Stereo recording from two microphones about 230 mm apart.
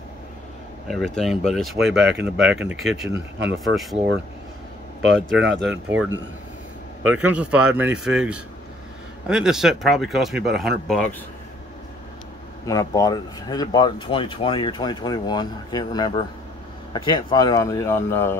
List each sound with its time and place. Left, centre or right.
0.8 s speech: centre
5.6 s speech: centre
7.1 s speech: centre
12.6 s speech: centre